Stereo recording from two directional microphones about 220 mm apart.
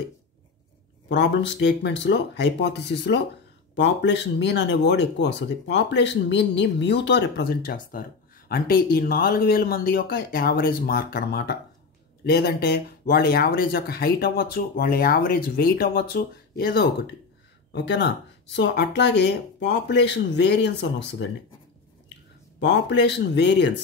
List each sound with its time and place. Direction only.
1.0 s speech: 50° left (ahead or behind)
17.7 s speech: 50° left (ahead or behind)
22.6 s speech: 50° left (ahead or behind)